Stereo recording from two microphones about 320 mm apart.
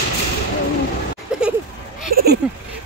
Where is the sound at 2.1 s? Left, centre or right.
Right.